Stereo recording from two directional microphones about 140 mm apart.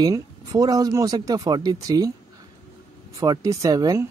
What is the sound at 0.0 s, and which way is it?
Speech, 25° right (ahead or behind).